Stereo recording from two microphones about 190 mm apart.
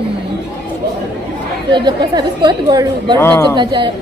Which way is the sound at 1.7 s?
25° right (ahead or behind).